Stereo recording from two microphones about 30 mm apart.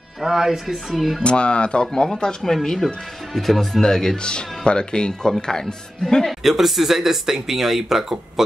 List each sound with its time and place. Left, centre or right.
0.2 s speech: centre
1.2 s speech: left
2.4 s speech: centre
4.2 s speech: left
6.4 s speech: centre